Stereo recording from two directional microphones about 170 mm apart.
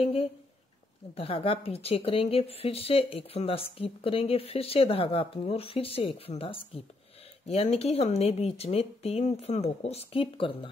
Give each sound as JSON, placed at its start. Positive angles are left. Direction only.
{"t": 0.0, "sound": "speech", "side_deg": 35}